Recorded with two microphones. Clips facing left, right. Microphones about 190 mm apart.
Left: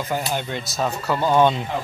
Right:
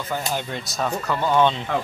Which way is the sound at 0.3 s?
Centre (ahead or behind).